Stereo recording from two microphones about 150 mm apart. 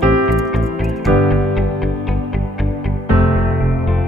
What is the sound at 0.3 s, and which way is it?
Music, centre (ahead or behind).